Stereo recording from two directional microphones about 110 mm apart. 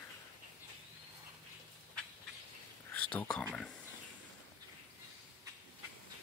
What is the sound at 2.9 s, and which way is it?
Speech, 10° left (ahead or behind).